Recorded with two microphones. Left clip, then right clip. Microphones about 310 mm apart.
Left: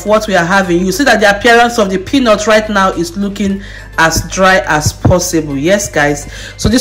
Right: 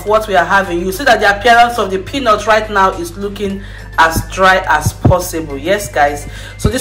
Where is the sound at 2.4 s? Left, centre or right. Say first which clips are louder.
Left 1 dB; left.